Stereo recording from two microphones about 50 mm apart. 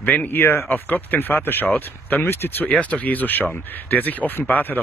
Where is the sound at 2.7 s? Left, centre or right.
Left.